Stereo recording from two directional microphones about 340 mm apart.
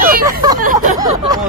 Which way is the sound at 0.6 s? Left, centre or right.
Right.